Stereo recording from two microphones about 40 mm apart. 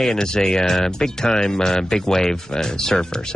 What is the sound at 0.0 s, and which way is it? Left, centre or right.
Speech, centre.